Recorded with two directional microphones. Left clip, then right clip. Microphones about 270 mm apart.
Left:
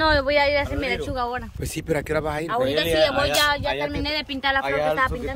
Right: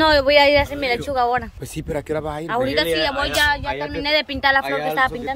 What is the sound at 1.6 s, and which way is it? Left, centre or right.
Speech, centre.